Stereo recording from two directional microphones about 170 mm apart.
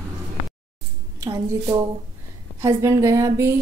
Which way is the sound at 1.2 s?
20° right (ahead or behind).